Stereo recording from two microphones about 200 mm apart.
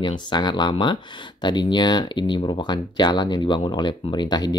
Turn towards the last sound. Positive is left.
turn(degrees=20)  # may be behind; listen again after turning